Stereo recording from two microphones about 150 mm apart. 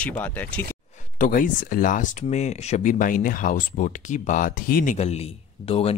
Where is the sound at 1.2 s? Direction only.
65° left (ahead or behind).